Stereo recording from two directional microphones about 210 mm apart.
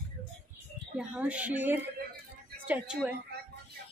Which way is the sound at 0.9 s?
5° right (ahead or behind).